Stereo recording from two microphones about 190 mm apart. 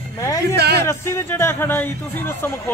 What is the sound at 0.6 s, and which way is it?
Speech, 60° right (ahead or behind).